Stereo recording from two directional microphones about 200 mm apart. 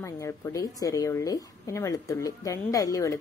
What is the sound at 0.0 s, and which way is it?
A woman's voice, 15° left (ahead or behind).